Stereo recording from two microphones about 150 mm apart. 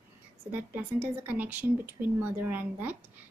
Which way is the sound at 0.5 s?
15° right (ahead or behind).